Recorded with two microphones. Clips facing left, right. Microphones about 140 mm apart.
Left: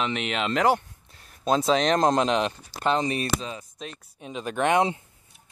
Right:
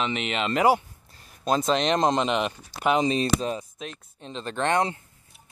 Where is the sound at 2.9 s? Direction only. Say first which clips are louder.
Right 3 dB; 25° right (ahead or behind).